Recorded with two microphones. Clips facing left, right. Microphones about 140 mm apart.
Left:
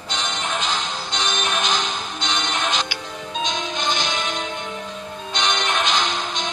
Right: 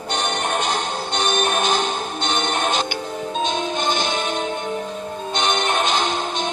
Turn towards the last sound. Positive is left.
turn(degrees=-50)  # may be behind; listen again after turning